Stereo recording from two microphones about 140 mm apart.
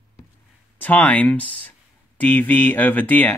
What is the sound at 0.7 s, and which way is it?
Speech, 10° left (ahead or behind).